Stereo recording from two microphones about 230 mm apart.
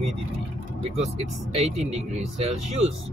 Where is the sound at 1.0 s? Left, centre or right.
Right.